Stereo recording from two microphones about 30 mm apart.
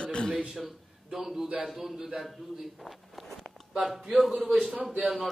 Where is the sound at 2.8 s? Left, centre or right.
Centre.